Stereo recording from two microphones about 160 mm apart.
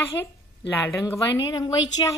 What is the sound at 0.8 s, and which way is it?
Speech, 15° left (ahead or behind).